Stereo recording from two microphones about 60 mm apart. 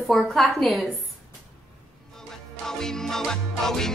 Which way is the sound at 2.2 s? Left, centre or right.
Centre.